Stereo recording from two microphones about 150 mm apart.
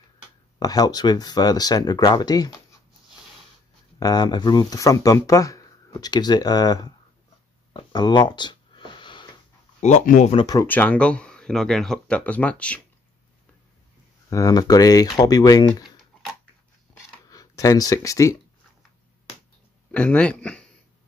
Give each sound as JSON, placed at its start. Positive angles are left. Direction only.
{"t": 0.6, "sound": "speech", "side_deg": 25}
{"t": 4.0, "sound": "speech", "side_deg": 25}
{"t": 7.7, "sound": "a sound", "side_deg": 30}
{"t": 9.8, "sound": "speech", "side_deg": 50}
{"t": 10.4, "sound": "speech", "side_deg": 25}
{"t": 10.7, "sound": "speech", "side_deg": 10}
{"t": 14.3, "sound": "speech", "side_deg": 25}
{"t": 17.3, "sound": "speech", "side_deg": 25}
{"t": 19.9, "sound": "speech", "side_deg": 10}